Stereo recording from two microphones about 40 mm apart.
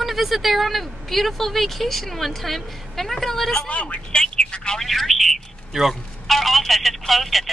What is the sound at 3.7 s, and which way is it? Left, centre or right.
Speech, left.